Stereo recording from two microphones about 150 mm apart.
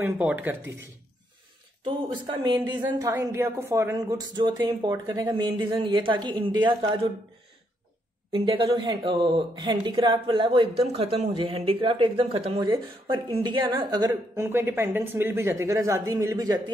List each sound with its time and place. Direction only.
0.0 s speech: 10° right (ahead or behind)
1.9 s speech: 30° right (ahead or behind)
8.3 s speech: 35° right (ahead or behind)
14.4 s speech: 15° right (ahead or behind)